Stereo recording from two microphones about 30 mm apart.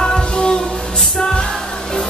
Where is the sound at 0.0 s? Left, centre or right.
Left.